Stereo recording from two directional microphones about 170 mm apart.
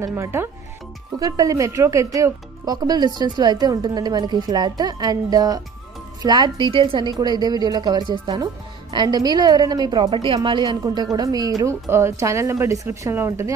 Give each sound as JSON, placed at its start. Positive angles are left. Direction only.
{"t": 0.0, "sound": "speech", "side_deg": -15}